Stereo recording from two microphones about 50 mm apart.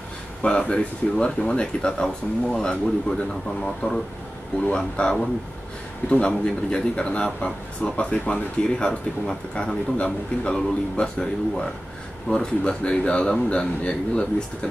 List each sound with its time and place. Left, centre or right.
0.4 s a man's voice: left
4.7 s a man's voice: centre